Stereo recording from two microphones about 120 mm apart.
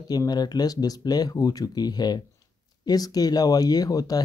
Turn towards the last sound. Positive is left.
turn(degrees=30)  # may be behind; listen again after turning